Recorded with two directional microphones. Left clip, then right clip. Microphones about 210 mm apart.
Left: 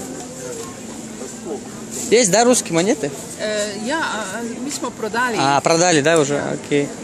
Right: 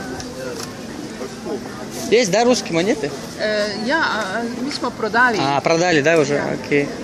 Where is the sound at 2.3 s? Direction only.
35° left (ahead or behind).